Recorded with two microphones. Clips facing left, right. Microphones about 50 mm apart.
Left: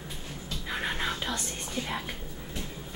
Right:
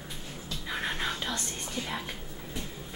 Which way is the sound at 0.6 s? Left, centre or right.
Centre.